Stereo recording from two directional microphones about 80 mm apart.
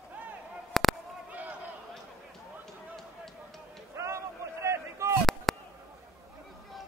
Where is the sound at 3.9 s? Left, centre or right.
Right.